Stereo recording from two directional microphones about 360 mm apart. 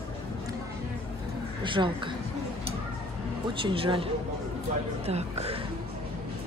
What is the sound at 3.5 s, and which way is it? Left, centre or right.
Speech, centre.